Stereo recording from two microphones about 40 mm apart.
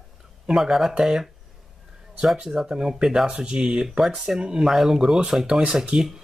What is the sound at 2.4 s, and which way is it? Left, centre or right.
Speech, centre.